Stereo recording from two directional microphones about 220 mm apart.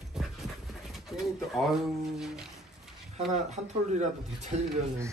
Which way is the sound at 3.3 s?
30° right (ahead or behind).